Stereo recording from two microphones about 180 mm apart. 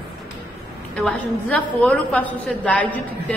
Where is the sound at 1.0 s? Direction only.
5° left (ahead or behind).